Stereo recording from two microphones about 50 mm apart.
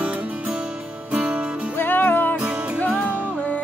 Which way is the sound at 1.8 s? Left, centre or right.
Left.